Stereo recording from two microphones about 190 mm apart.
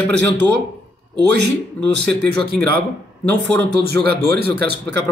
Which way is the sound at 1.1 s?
60° right (ahead or behind).